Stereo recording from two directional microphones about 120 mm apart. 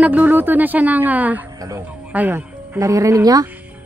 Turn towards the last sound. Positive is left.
turn(degrees=-30)  # may be behind; listen again after turning